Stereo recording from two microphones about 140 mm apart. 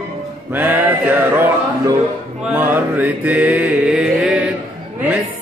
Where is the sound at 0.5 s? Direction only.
15° right (ahead or behind).